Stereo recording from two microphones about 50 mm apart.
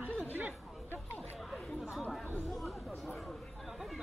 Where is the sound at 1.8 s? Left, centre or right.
Centre.